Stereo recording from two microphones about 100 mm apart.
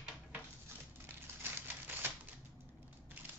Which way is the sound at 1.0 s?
20° right (ahead or behind).